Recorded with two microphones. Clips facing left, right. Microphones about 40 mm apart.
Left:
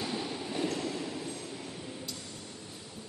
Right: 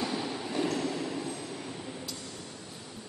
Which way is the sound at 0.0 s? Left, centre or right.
Centre.